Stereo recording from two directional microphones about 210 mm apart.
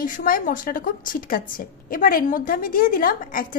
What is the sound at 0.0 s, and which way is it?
A woman's voice, 40° left (ahead or behind).